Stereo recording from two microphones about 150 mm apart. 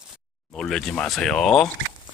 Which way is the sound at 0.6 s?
5° left (ahead or behind).